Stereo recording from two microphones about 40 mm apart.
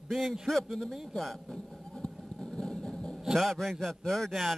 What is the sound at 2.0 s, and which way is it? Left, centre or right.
Vehicle, centre.